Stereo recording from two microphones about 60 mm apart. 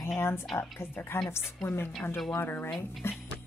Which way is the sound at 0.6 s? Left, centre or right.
Left.